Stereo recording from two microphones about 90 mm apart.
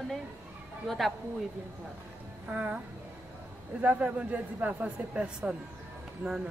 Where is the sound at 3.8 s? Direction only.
15° right (ahead or behind).